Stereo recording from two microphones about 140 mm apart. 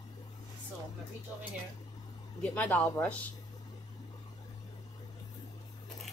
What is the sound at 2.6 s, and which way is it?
Speech, 10° left (ahead or behind).